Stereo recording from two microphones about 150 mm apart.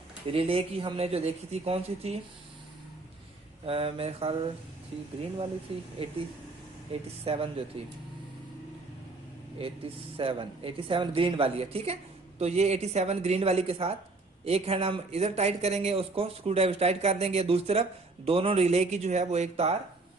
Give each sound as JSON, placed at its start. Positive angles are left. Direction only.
{"t": 0.3, "sound": "speech", "side_deg": -40}
{"t": 3.6, "sound": "speech", "side_deg": -40}
{"t": 5.7, "sound": "speech", "side_deg": -40}
{"t": 6.9, "sound": "speech", "side_deg": -40}
{"t": 10.1, "sound": "speech", "side_deg": -35}